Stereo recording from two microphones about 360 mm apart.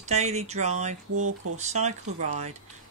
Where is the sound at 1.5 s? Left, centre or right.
Centre.